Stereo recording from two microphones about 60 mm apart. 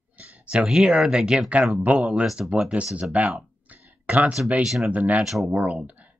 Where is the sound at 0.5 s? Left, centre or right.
Centre.